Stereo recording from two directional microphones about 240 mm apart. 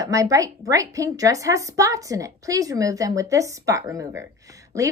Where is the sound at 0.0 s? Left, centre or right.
Centre.